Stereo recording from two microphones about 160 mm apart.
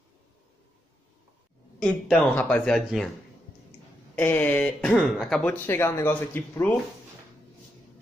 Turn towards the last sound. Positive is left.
turn(degrees=15)  # may be behind; listen again after turning